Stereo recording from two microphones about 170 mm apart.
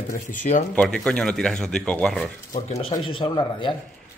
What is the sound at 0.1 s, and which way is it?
Speech, 50° left (ahead or behind).